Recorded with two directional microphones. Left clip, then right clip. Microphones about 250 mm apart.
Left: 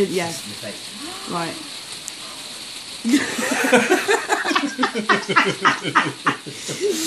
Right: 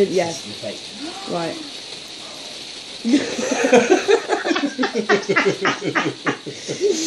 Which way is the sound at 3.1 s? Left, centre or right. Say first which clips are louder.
Even; centre.